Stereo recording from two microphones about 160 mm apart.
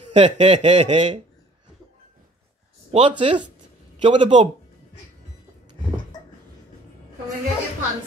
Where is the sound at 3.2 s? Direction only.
35° right (ahead or behind).